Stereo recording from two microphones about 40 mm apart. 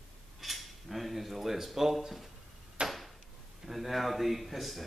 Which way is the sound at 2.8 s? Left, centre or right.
Right.